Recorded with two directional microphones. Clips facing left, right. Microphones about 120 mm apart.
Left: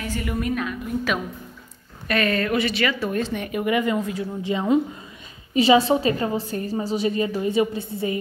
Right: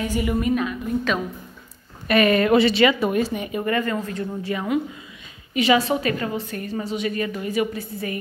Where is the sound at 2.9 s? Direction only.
15° right (ahead or behind).